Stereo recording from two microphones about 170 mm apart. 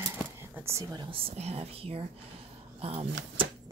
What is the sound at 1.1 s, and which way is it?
Speech, 35° right (ahead or behind).